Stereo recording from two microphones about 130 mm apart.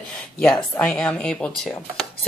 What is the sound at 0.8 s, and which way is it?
Speech, 10° left (ahead or behind).